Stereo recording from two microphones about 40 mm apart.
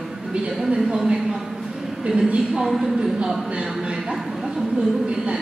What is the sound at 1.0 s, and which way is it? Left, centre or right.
Speech, centre.